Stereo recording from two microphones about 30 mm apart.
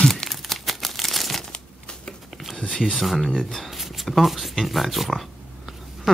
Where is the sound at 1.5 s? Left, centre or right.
Left.